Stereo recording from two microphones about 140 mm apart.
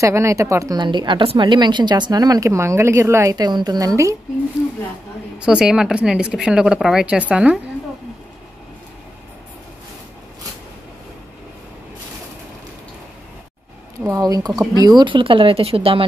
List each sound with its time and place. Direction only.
0.0 s a woman's voice: 20° right (ahead or behind)
5.4 s speech: 5° right (ahead or behind)
14.1 s a woman's voice: 25° right (ahead or behind)